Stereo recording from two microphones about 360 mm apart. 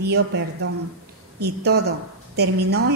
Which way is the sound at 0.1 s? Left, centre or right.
Right.